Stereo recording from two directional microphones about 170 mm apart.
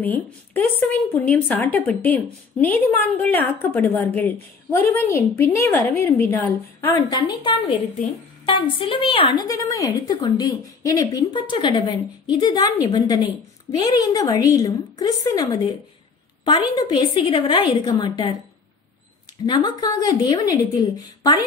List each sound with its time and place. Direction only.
0.0 s a woman's voice: 10° left (ahead or behind)
7.1 s a woman's voice: 25° left (ahead or behind)
19.4 s a woman's voice: 25° left (ahead or behind)